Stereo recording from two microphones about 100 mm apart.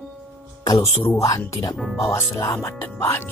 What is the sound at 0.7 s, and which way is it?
Speech, 30° left (ahead or behind).